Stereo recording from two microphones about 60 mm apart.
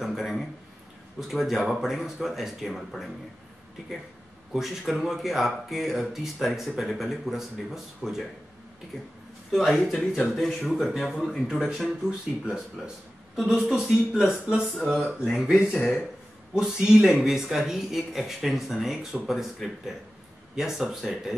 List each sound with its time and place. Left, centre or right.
0.0 s a sound: centre
1.2 s speech: centre
9.5 s speech: centre
10.9 s speech: centre
15.4 s speech: centre
15.7 s speech: centre
16.5 s speech: centre